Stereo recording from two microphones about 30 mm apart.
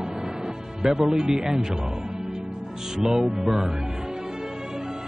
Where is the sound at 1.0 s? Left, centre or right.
Centre.